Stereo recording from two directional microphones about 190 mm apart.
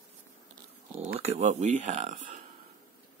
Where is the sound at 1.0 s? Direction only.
35° right (ahead or behind).